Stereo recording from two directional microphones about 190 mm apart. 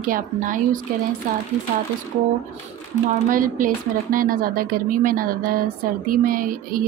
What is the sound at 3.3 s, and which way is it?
Speech, 45° right (ahead or behind).